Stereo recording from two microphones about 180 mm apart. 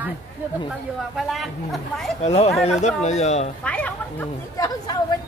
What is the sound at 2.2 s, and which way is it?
Speech, 35° left (ahead or behind).